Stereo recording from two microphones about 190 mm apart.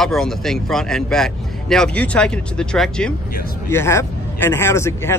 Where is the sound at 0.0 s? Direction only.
Centre (ahead or behind).